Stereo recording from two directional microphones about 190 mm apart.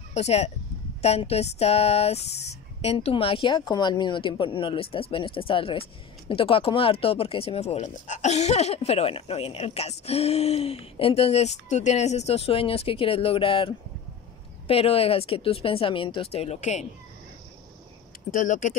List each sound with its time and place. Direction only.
0.1 s speech: 35° left (ahead or behind)
18.3 s speech: 45° left (ahead or behind)